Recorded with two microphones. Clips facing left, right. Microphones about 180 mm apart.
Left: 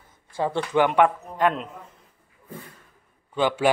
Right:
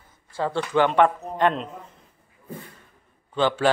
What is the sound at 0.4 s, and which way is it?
Speech, 15° left (ahead or behind).